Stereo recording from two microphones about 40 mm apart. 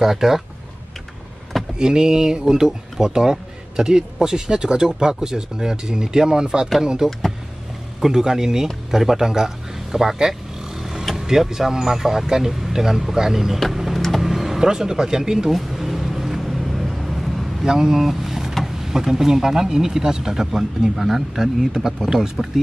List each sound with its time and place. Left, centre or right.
0.0 s speech: centre
1.8 s speech: centre
7.1 s speech: centre
8.0 s speech: centre
13.6 s a sound: centre
14.2 s speech: centre
15.5 s vehicle: centre
17.6 s speech: centre